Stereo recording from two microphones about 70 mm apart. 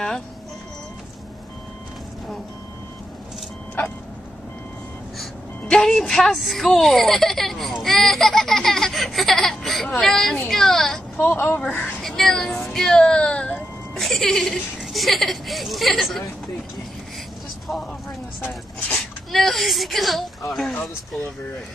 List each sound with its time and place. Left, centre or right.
5.7 s a woman's voice: centre
7.8 s a sound: centre
9.9 s speech: centre
10.5 s a sound: centre
11.1 s speech: left
11.5 s speech: centre
12.0 s a woman's voice: centre
19.3 s a woman's voice: centre